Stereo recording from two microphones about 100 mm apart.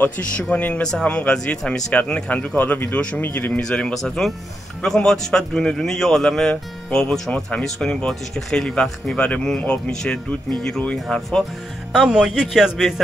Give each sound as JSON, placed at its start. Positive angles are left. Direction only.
{"t": 0.0, "sound": "a man's voice", "side_deg": 15}
{"t": 3.6, "sound": "a man's voice", "side_deg": 10}
{"t": 11.9, "sound": "a man's voice", "side_deg": -5}